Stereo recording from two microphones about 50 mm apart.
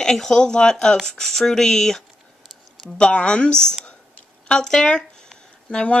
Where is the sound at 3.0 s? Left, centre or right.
Centre.